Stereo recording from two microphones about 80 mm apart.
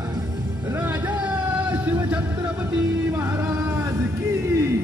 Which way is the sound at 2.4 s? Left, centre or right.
Centre.